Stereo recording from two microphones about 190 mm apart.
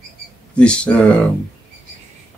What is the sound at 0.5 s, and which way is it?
Speech, 5° left (ahead or behind).